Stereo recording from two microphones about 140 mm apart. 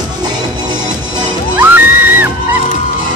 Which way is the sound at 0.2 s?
30° right (ahead or behind).